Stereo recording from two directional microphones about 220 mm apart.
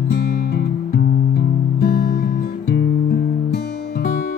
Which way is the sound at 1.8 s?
45° left (ahead or behind).